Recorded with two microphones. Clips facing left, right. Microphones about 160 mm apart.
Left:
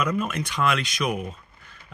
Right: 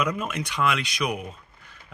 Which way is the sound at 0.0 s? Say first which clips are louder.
Left 2 dB; 15° right (ahead or behind).